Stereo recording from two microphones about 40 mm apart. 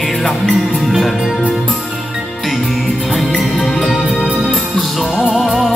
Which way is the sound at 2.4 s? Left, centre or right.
Centre.